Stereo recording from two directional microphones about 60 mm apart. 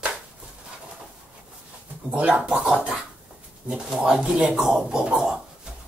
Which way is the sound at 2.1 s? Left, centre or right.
Centre.